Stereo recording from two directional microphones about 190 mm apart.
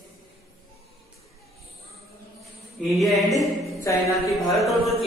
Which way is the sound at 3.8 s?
15° left (ahead or behind).